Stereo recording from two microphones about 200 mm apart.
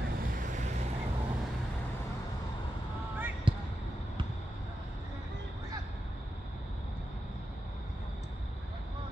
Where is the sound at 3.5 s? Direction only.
25° right (ahead or behind).